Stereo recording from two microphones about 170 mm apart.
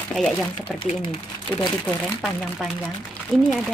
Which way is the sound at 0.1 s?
Centre (ahead or behind).